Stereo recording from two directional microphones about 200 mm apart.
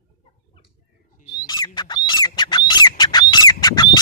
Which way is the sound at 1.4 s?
20° left (ahead or behind).